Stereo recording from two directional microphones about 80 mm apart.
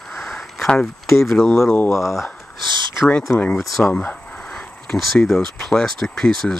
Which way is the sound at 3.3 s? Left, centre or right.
Centre.